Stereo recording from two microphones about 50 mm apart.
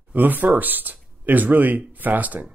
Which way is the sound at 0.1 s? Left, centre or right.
Right.